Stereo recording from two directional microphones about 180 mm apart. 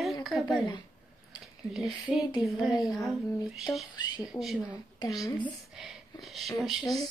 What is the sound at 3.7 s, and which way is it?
Speech, 15° left (ahead or behind).